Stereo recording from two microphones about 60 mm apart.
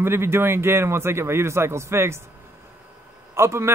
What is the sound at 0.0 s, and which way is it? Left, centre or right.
Speech, right.